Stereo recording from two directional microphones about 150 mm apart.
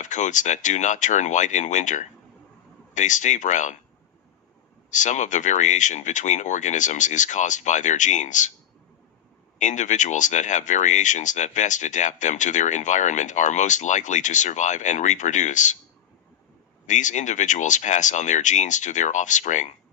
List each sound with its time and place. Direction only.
0.0 s speech: 55° left (ahead or behind)
4.9 s speech: 55° left (ahead or behind)
9.6 s speech: 55° left (ahead or behind)
16.8 s speech: 55° left (ahead or behind)